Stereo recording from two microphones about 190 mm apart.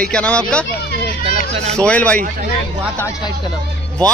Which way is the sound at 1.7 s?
5° left (ahead or behind).